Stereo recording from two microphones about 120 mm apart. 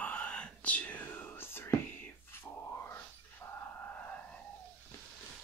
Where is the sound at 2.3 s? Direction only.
20° left (ahead or behind).